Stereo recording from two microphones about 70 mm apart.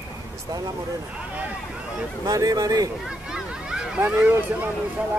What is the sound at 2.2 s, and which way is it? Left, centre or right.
Speech, right.